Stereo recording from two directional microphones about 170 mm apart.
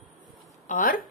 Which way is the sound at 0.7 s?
55° left (ahead or behind).